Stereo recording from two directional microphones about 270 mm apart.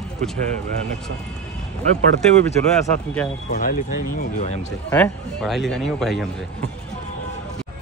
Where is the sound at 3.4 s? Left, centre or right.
Left.